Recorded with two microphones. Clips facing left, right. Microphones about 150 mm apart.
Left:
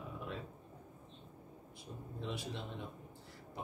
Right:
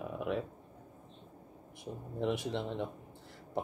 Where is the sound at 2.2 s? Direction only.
65° right (ahead or behind).